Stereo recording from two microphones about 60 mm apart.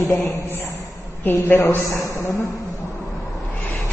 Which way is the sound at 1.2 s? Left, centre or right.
Left.